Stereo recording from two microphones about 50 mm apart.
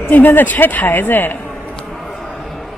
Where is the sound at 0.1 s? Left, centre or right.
Left.